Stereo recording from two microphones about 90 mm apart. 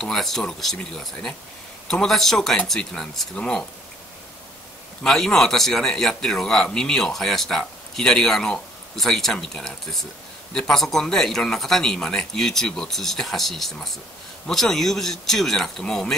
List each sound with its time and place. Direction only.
0.0 s a man's voice: 5° left (ahead or behind)
5.0 s a man's voice: 5° left (ahead or behind)